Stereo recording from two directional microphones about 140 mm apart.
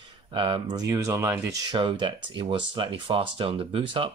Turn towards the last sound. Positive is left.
turn(degrees=-40)  # may be behind; listen again after turning